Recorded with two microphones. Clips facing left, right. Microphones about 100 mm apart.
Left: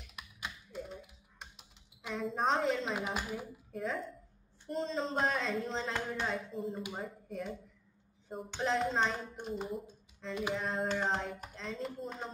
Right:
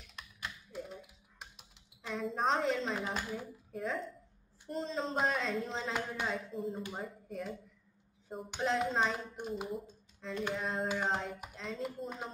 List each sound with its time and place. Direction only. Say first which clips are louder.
0.2 s typing: even; 10° left (ahead or behind)
0.7 s typing: even; centre (ahead or behind)
2.0 s speech: even; centre (ahead or behind)